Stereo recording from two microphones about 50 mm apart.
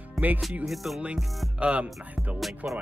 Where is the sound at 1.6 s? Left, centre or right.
Right.